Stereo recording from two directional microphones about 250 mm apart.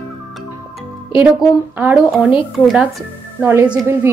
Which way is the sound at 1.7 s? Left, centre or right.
Centre.